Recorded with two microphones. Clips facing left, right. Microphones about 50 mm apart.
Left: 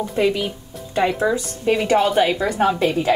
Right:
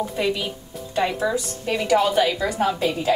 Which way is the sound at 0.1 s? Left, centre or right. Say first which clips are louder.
Left 5 dB; centre.